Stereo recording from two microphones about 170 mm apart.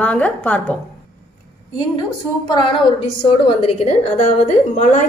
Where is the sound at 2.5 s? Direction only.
30° left (ahead or behind).